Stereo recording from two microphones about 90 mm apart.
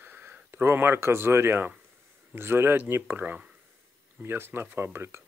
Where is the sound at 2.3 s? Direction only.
25° right (ahead or behind).